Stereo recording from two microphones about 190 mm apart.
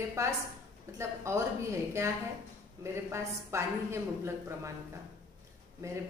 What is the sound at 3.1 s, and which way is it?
A woman's voice, 15° right (ahead or behind).